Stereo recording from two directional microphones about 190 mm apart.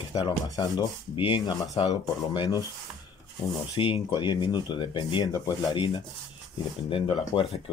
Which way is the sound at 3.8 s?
25° left (ahead or behind).